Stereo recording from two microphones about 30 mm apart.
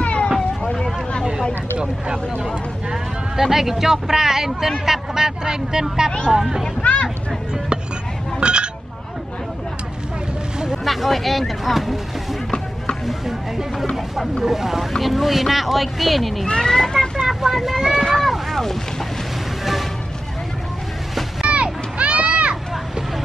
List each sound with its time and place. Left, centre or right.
0.0 s vehicle: left
2.9 s speech: centre
6.8 s speech: left
8.4 s telephone dialing: right
10.9 s speech: centre
14.4 s speech: centre
14.9 s speech: centre
16.4 s speech: left
17.3 s speech: centre
18.1 s boat: centre
21.5 s music: right
21.9 s children playing: right